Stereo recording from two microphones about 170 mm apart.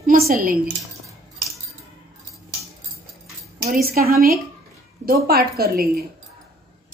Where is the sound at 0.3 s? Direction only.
55° right (ahead or behind).